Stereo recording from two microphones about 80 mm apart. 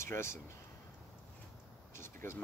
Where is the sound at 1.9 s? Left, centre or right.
Left.